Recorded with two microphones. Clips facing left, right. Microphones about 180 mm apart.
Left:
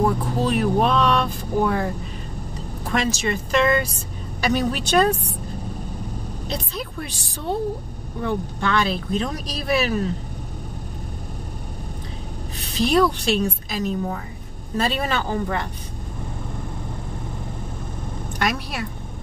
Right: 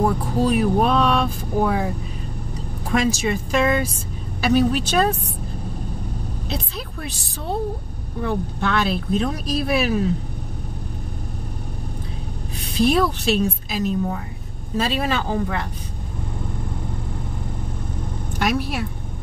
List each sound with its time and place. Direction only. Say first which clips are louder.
0.0 s speech: right 1 dB; 5° right (ahead or behind)
6.5 s speech: left 2 dB; centre (ahead or behind)
12.7 s speech: even; 5° right (ahead or behind)
18.4 s speech: right 3 dB; 5° right (ahead or behind)